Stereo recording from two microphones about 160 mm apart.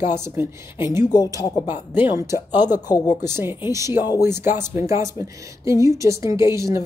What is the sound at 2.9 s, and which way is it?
Speech, 15° right (ahead or behind).